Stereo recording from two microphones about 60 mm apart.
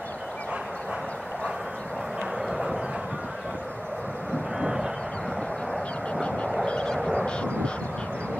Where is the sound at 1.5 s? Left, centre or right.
Centre.